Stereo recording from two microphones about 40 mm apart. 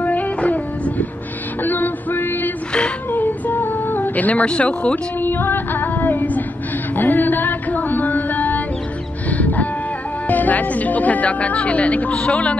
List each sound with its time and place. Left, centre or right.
0.0 s music: left
1.6 s a sound: left
3.1 s music: left
4.5 s speech: left
5.2 s female singing: left
7.0 s music: left
10.2 s speech: left